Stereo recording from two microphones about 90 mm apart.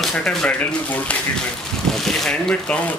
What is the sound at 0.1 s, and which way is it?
Speech, 5° left (ahead or behind).